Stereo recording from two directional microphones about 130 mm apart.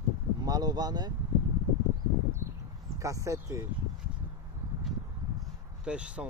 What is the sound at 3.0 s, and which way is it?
Speech, 25° right (ahead or behind).